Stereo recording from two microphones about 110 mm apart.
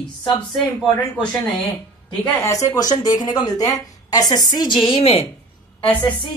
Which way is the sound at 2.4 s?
30° left (ahead or behind).